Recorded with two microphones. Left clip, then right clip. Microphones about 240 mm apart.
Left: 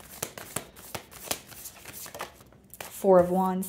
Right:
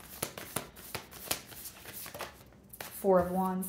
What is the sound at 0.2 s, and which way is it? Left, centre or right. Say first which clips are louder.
Shuffling cards: left 2 dB; left.